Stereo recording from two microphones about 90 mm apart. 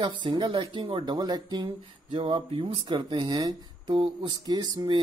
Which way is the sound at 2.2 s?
90° right.